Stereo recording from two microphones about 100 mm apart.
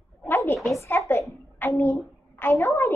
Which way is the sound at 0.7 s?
25° left (ahead or behind).